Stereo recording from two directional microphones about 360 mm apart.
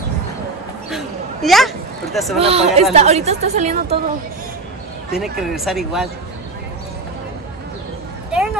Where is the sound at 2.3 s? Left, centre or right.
Centre.